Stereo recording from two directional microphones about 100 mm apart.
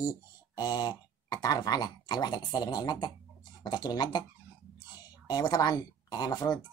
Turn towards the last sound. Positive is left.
turn(degrees=40)  # may be behind; listen again after turning